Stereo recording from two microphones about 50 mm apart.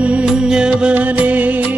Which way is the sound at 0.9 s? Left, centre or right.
Right.